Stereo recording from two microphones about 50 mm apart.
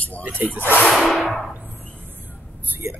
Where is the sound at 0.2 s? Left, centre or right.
Right.